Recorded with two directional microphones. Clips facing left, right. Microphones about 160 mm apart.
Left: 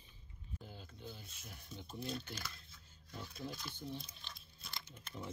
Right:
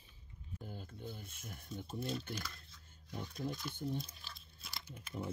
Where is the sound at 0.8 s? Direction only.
55° right (ahead or behind).